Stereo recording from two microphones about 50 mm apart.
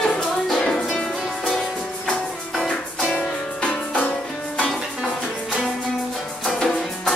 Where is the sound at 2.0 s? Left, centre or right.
Centre.